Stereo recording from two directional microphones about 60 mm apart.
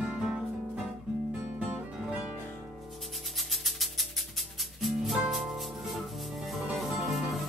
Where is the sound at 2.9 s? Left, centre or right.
Centre.